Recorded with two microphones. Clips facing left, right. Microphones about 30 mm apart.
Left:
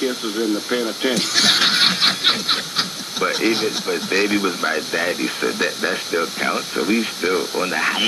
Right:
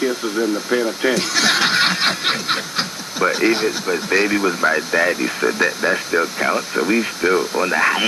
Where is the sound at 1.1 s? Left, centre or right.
Centre.